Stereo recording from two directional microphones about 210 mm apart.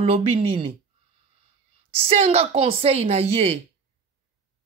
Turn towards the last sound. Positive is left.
turn(degrees=-30)  # may be behind; listen again after turning